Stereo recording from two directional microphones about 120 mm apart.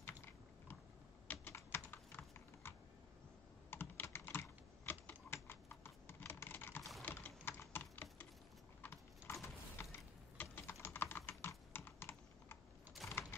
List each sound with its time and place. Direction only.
0.0 s typing: 15° left (ahead or behind)
1.2 s computer keyboard: 15° left (ahead or behind)
3.7 s computer keyboard: 15° left (ahead or behind)
4.3 s typing: 15° left (ahead or behind)
8.8 s mechanisms: 20° left (ahead or behind)